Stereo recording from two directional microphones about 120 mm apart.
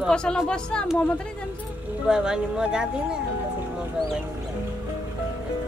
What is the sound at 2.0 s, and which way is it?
Speech, 5° right (ahead or behind).